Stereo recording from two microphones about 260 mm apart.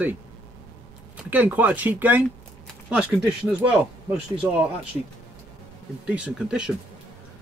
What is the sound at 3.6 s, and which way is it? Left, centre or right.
Speech, centre.